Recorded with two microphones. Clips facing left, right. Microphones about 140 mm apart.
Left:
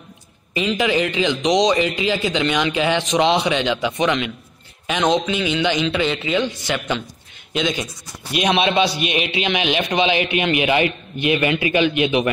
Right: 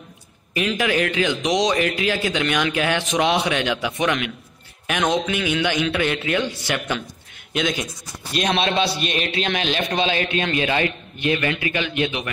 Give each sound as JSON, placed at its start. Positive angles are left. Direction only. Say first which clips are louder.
{"t": 0.6, "sound": "speech", "louder": "left 2 dB", "side_deg": -5}
{"t": 7.5, "sound": "a man's voice", "louder": "left 1 dB", "side_deg": 0}